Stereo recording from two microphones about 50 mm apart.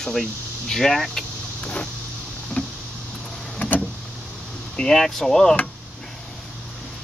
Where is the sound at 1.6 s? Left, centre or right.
Left.